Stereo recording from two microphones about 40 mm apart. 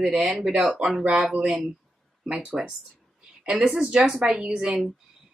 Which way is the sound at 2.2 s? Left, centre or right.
Right.